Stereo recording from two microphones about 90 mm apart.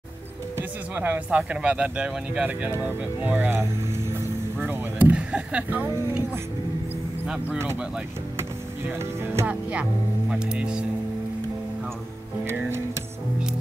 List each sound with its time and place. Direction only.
0.6 s speech: 20° right (ahead or behind)
8.4 s music: 30° right (ahead or behind)
9.5 s speech: 15° right (ahead or behind)
12.4 s music: 25° right (ahead or behind)